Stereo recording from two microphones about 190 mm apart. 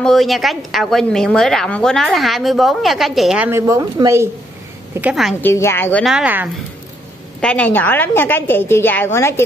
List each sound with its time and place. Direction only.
0.0 s a woman's voice: centre (ahead or behind)
5.4 s a woman's voice: 15° left (ahead or behind)
6.0 s a woman's voice: 5° right (ahead or behind)
7.3 s a woman's voice: 5° left (ahead or behind)